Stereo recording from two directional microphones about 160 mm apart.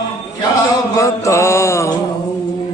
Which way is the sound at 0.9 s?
20° left (ahead or behind).